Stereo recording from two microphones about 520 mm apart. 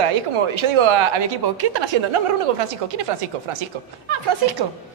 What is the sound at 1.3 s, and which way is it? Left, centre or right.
Speech, right.